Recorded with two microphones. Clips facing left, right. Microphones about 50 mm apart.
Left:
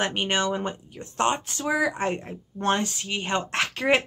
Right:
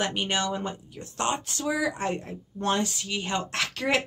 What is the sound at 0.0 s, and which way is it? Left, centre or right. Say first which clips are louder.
Speech: left 2 dB; left.